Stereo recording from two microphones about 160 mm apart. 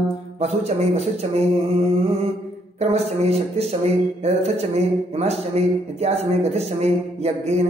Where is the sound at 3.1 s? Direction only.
40° right (ahead or behind).